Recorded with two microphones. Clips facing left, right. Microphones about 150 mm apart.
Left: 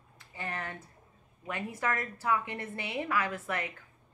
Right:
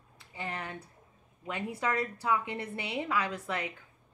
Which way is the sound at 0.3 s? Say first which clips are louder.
Even; 15° right (ahead or behind).